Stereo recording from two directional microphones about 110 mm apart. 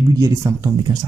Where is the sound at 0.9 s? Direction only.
40° right (ahead or behind).